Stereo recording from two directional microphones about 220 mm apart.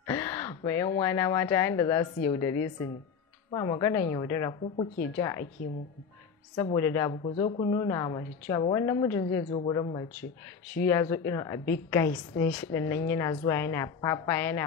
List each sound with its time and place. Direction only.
0.0 s a woman's voice: 15° left (ahead or behind)
6.5 s a woman's voice: 15° left (ahead or behind)
7.2 s a woman's voice: 25° left (ahead or behind)